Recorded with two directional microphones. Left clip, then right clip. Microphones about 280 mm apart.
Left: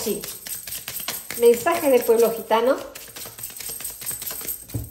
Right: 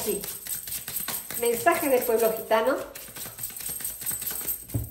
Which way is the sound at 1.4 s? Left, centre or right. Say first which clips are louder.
Left 6 dB; left.